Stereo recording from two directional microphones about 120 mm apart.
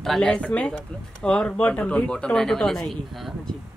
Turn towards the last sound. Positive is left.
turn(degrees=0)  # may be behind; listen again after turning